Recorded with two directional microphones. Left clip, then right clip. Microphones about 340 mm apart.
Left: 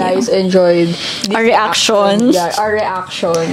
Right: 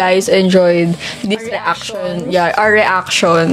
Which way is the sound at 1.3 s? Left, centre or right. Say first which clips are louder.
Left 8 dB; left.